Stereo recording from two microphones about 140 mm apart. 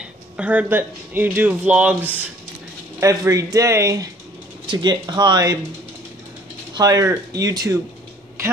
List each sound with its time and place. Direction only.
0.0 s speech: 10° right (ahead or behind)
3.0 s speech: 25° right (ahead or behind)
4.6 s speech: 35° right (ahead or behind)
6.7 s speech: 25° right (ahead or behind)